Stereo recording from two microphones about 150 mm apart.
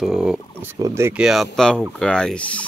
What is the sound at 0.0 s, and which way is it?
Speech, 5° right (ahead or behind).